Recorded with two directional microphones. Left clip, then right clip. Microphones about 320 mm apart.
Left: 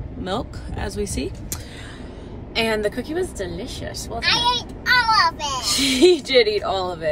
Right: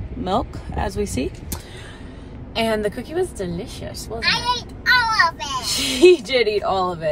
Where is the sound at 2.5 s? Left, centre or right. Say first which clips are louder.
Even; centre.